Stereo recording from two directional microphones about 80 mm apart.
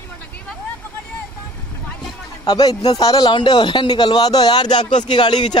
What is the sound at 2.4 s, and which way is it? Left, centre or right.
Speech, left.